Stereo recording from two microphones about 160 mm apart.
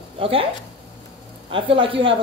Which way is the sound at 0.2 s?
35° right (ahead or behind).